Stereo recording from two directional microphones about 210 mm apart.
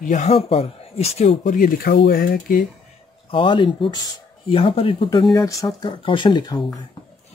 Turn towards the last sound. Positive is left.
turn(degrees=20)  # may be behind; listen again after turning